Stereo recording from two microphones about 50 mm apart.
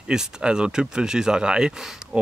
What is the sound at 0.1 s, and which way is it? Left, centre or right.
Speech, centre.